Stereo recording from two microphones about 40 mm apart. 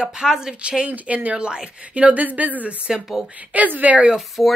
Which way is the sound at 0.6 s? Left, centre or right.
Right.